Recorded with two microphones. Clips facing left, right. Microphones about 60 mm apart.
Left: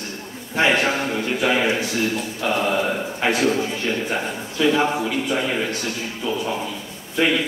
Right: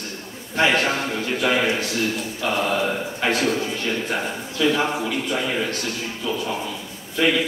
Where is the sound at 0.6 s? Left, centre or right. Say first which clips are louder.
Left 1 dB; centre.